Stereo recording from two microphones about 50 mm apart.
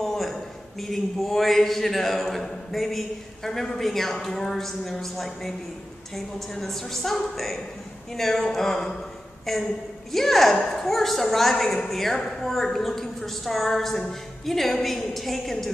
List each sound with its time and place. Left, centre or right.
0.0 s a man's voice: centre
8.1 s a sound: centre
9.5 s a woman's voice: centre